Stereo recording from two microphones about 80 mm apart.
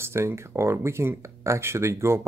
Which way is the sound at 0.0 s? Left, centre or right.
Right.